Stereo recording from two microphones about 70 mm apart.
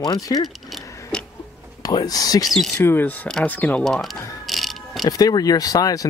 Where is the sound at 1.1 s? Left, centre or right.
Centre.